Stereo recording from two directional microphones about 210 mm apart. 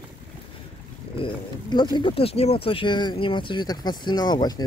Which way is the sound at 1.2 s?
20° left (ahead or behind).